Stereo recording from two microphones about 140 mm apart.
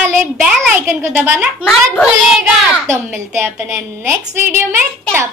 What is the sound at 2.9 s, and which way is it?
A woman's voice, 15° right (ahead or behind).